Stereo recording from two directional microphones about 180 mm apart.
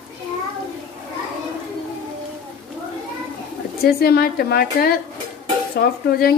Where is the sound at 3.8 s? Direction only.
60° left (ahead or behind).